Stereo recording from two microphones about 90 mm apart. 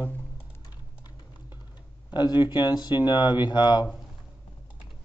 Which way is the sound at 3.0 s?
55° left (ahead or behind).